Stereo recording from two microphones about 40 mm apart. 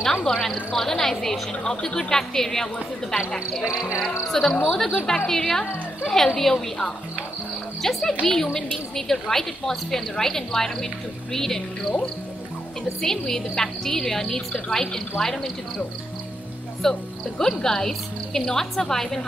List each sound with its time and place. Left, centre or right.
0.0 s a woman's voice: centre
13.0 s a woman's voice: centre
16.8 s a woman's voice: centre